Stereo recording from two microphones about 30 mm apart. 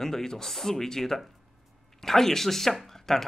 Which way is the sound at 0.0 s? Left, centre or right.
Centre.